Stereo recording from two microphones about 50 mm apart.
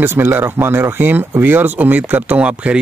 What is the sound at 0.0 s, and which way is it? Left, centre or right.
Speech, right.